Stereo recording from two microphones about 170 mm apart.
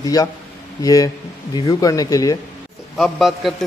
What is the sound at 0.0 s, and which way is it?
Speech, 20° left (ahead or behind).